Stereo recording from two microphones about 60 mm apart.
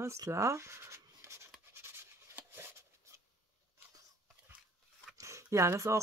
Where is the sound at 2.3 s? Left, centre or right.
Right.